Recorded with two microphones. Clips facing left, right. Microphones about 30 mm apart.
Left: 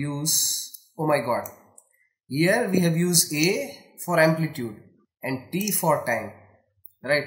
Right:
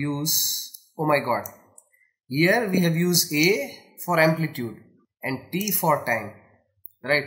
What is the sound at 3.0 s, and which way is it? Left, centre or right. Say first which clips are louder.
Speech: right 2 dB; centre.